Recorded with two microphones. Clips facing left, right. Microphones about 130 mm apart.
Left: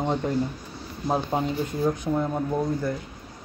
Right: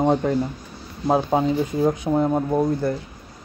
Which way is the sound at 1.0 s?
90° right.